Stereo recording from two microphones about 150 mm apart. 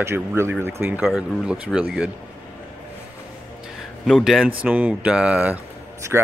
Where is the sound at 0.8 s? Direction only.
5° right (ahead or behind).